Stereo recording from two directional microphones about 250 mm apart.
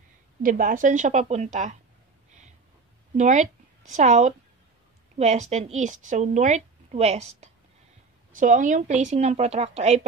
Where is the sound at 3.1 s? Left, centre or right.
Right.